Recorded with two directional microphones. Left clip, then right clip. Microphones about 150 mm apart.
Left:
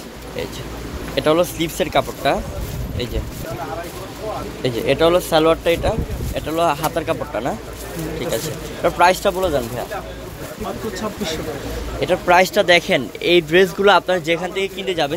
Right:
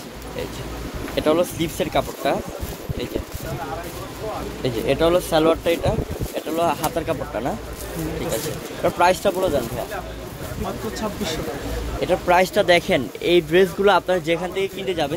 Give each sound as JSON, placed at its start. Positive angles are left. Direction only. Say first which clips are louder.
{"t": 1.1, "sound": "speech", "louder": "left 3 dB", "side_deg": -10}
{"t": 4.6, "sound": "speech", "louder": "left 3 dB", "side_deg": 0}
{"t": 8.8, "sound": "speech", "louder": "left 3 dB", "side_deg": -10}
{"t": 12.0, "sound": "speech", "louder": "left 3 dB", "side_deg": -10}